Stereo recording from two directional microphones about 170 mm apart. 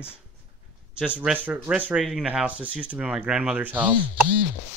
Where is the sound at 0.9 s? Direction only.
5° right (ahead or behind).